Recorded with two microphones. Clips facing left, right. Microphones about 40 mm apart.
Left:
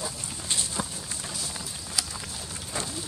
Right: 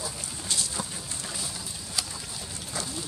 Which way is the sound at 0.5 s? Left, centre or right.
Left.